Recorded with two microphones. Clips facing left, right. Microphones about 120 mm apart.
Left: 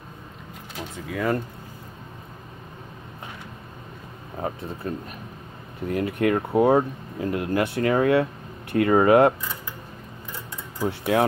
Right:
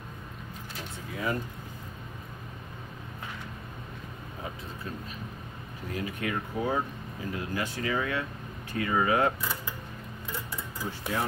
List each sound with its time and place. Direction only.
1.1 s speech: 70° left (ahead or behind)
4.4 s speech: 55° left (ahead or behind)
10.8 s speech: 75° left (ahead or behind)